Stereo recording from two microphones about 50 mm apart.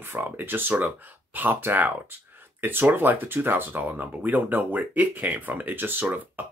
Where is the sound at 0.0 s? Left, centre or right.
Right.